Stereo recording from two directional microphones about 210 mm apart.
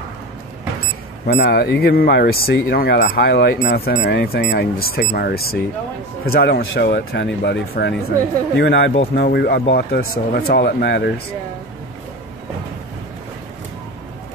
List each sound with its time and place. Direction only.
1.2 s speech: 50° left (ahead or behind)